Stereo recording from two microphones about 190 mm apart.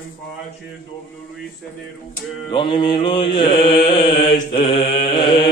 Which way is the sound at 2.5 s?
25° left (ahead or behind).